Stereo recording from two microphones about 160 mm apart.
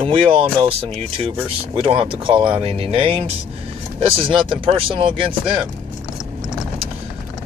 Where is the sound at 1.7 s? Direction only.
35° right (ahead or behind).